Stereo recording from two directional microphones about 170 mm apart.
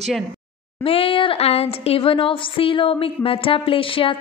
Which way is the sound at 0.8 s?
35° left (ahead or behind).